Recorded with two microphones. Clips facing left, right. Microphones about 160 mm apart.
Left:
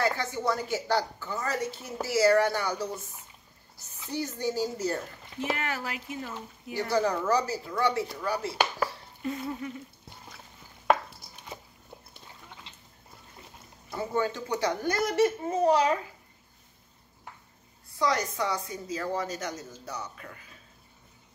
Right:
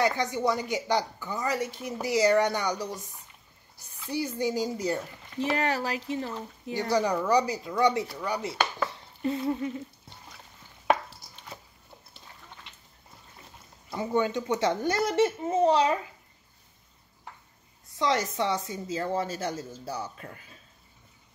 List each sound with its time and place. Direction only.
0.0 s a woman's voice: 15° right (ahead or behind)
5.4 s speech: 35° right (ahead or behind)
6.7 s a woman's voice: 15° right (ahead or behind)
8.8 s stir: 25° right (ahead or behind)
13.8 s speech: 20° right (ahead or behind)
17.9 s speech: 25° right (ahead or behind)